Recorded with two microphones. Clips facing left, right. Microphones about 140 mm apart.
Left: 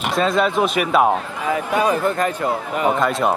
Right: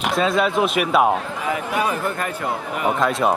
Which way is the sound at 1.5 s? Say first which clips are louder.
Left 4 dB; 30° left (ahead or behind).